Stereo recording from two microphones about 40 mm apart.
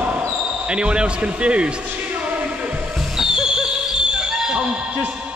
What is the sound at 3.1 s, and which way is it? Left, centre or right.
Music, centre.